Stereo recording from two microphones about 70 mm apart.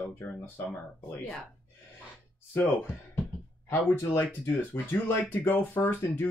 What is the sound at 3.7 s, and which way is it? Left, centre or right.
Speech, left.